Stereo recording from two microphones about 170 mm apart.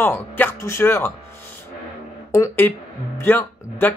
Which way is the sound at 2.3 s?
15° left (ahead or behind).